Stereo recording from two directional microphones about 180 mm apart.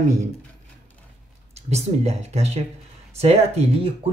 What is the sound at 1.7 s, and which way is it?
Speech, 35° right (ahead or behind).